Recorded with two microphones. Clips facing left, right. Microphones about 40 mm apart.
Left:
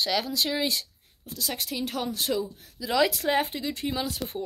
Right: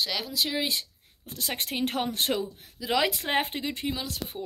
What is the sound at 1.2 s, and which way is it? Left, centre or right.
Speech, right.